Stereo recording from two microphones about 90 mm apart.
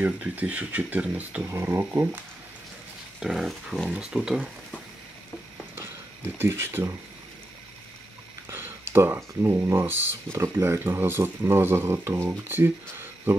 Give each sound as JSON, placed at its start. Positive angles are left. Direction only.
{"t": 0.0, "sound": "speech", "side_deg": -15}
{"t": 1.4, "sound": "speech", "side_deg": -30}
{"t": 3.2, "sound": "a sound", "side_deg": -5}
{"t": 3.9, "sound": "speech", "side_deg": -10}
{"t": 5.8, "sound": "a sound", "side_deg": -25}
{"t": 8.5, "sound": "speech", "side_deg": -25}